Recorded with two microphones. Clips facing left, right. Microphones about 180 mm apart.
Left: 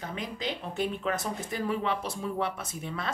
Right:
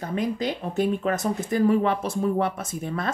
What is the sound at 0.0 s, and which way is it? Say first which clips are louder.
Speech: right 9 dB; 45° right (ahead or behind).